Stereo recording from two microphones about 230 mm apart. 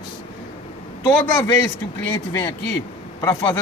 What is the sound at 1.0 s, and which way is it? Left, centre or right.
A man's voice, centre.